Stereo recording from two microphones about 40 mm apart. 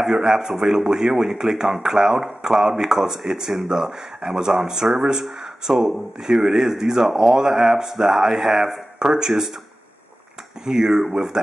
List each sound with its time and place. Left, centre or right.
0.0 s speech: centre
10.6 s speech: centre